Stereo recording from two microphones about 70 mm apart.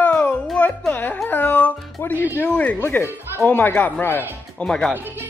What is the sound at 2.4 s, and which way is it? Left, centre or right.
Speech, centre.